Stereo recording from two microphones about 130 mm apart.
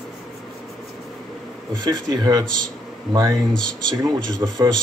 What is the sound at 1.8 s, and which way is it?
Speech, 35° right (ahead or behind).